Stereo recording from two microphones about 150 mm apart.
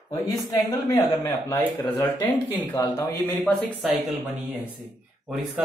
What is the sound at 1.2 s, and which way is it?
A man's voice, 15° left (ahead or behind).